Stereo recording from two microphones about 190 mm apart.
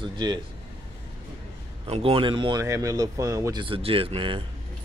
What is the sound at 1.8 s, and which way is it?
A man's voice, 30° right (ahead or behind).